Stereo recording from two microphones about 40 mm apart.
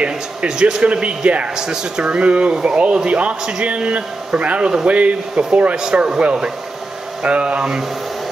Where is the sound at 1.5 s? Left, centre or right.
Centre; by 5.8 s right.